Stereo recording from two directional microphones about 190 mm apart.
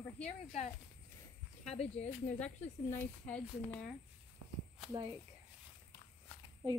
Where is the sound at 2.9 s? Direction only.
10° left (ahead or behind).